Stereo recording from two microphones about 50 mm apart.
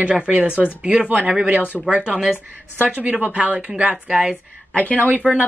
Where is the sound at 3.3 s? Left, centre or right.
Right.